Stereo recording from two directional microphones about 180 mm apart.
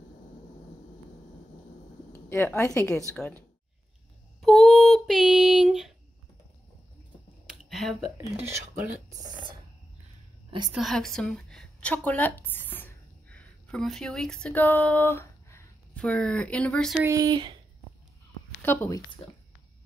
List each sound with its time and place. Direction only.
2.2 s a woman's voice: 10° left (ahead or behind)
4.4 s a sound: centre (ahead or behind)
7.4 s computer keyboard: centre (ahead or behind)
8.4 s speech: 10° right (ahead or behind)
10.7 s a woman's voice: centre (ahead or behind)
16.9 s speech: 15° right (ahead or behind)
18.6 s a woman's voice: 10° left (ahead or behind)